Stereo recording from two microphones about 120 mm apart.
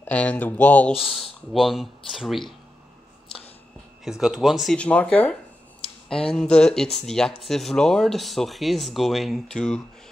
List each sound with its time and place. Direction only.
0.0 s speech: 10° left (ahead or behind)
1.5 s speech: centre (ahead or behind)
4.0 s speech: centre (ahead or behind)
4.7 s speech: 10° left (ahead or behind)